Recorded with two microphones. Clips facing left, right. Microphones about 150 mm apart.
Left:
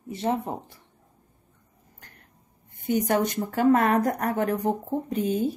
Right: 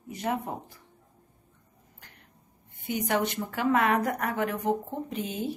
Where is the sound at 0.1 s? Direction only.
30° left (ahead or behind).